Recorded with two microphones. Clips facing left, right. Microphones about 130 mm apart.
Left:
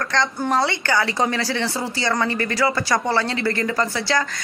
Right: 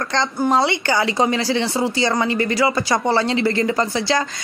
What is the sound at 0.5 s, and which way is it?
A man's voice, 20° right (ahead or behind).